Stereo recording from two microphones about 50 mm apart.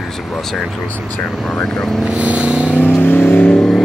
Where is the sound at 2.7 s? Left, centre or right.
Left.